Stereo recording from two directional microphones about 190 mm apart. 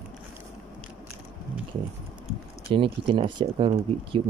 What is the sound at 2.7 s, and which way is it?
Speech, 25° right (ahead or behind).